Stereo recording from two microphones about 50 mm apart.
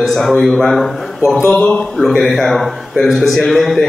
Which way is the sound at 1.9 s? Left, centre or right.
Centre.